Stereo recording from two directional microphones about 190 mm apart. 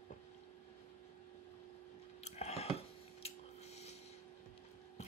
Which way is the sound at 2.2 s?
35° left (ahead or behind).